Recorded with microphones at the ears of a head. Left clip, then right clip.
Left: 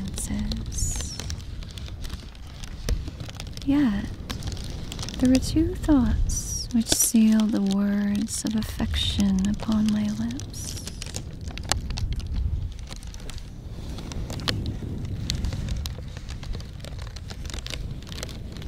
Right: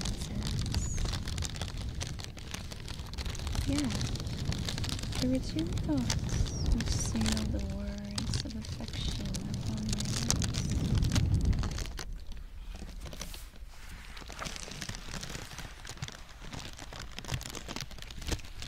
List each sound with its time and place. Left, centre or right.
0.3 s music: left
3.6 s speech: left
14.3 s a sound: left